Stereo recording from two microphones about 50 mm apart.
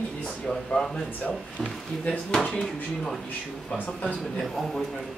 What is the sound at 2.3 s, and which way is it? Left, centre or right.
Speech, centre.